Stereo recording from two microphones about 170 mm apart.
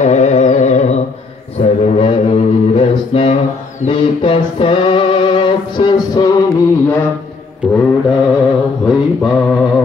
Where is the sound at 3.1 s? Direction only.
35° left (ahead or behind).